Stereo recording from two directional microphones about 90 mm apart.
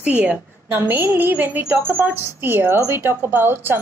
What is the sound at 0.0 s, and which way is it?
A woman's voice, 20° right (ahead or behind).